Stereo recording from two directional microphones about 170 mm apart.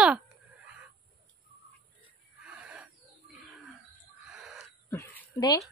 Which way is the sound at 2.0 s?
5° right (ahead or behind).